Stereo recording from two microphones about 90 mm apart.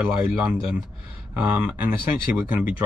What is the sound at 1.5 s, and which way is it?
Speech, 15° right (ahead or behind).